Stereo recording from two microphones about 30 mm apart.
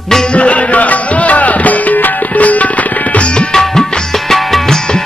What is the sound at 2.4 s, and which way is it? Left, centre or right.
Music, left.